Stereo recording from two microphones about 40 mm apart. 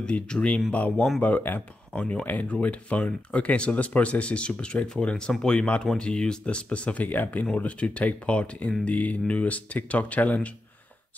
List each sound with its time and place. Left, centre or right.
0.0 s speech: left
1.2 s speech: left
7.5 s speech: left